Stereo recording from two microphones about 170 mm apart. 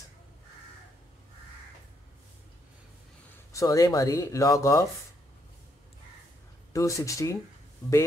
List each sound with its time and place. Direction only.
3.5 s speech: 20° left (ahead or behind)
6.7 s speech: 20° left (ahead or behind)